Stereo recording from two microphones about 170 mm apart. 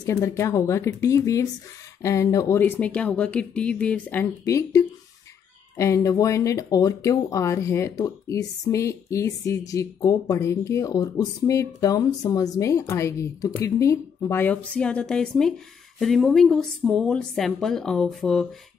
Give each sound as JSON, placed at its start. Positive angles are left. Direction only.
{"t": 0.0, "sound": "a woman's voice", "side_deg": 20}